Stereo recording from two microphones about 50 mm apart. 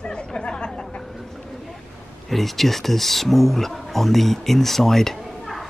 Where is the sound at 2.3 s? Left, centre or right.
Centre.